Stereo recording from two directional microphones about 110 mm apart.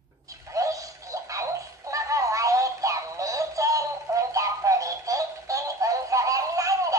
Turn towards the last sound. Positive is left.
turn(degrees=-30)  # may be behind; listen again after turning